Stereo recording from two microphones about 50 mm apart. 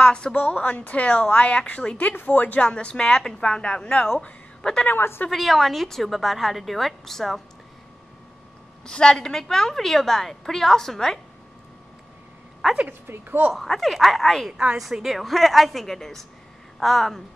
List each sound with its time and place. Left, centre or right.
0.0 s a woman's voice: centre
2.1 s a woman's voice: left
2.6 s a woman's voice: left
4.8 s speech: left
5.3 s a woman's voice: centre
8.8 s a woman's voice: centre
12.6 s a woman's voice: centre
13.0 s speech: right
13.7 s a woman's voice: centre
14.8 s a woman's voice: centre